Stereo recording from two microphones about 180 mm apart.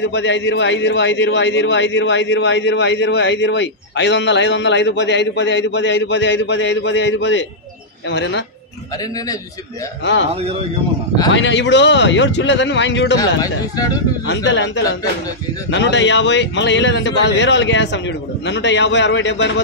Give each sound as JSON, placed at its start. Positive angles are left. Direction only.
{"t": 0.0, "sound": "a man's voice", "side_deg": 85}
{"t": 11.3, "sound": "a man's voice", "side_deg": 80}
{"t": 13.4, "sound": "speech", "side_deg": 20}
{"t": 14.2, "sound": "speech", "side_deg": 75}
{"t": 15.7, "sound": "a man's voice", "side_deg": 85}